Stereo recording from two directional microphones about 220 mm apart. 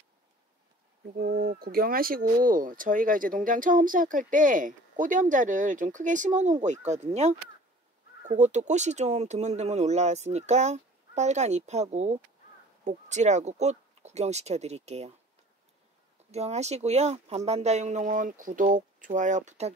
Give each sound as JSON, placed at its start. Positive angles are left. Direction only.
{"t": 1.1, "sound": "speech", "side_deg": -40}
{"t": 16.3, "sound": "speech", "side_deg": -30}